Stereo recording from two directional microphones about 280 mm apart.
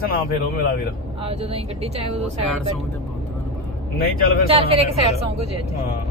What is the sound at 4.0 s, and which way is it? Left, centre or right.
Speech, left.